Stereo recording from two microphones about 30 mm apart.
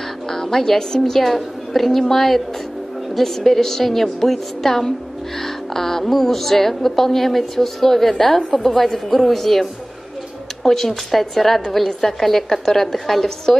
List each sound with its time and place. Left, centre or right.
0.3 s a woman's voice: centre
1.2 s a woman's voice: centre